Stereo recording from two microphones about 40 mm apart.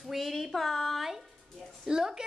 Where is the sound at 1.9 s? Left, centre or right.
Centre.